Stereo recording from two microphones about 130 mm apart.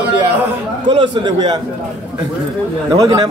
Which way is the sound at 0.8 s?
35° right (ahead or behind).